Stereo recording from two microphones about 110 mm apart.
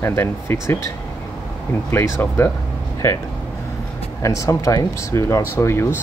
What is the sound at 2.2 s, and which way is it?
Speech, 20° left (ahead or behind).